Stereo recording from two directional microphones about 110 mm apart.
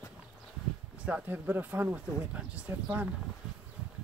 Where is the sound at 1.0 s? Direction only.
15° right (ahead or behind).